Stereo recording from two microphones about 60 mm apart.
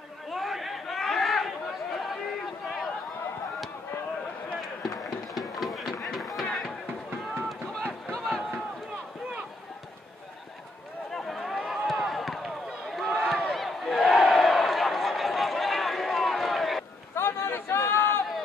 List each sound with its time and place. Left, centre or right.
0.3 s chatter: centre
5.3 s run: centre
11.1 s run: centre
13.5 s crowd: centre
17.1 s a sound: left